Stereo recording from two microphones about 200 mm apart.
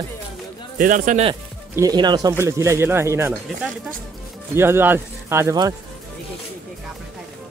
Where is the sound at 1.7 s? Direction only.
20° right (ahead or behind).